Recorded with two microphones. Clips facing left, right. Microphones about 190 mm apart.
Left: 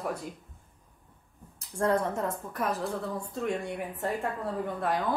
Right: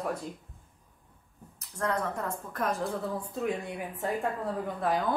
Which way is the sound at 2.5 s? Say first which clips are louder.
Right 3 dB; 5° left (ahead or behind).